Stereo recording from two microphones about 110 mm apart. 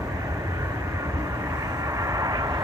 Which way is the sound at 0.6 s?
30° right (ahead or behind).